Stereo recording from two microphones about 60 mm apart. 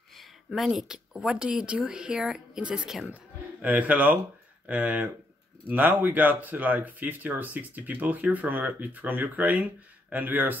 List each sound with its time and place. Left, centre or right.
0.7 s speech: centre
3.6 s speech: right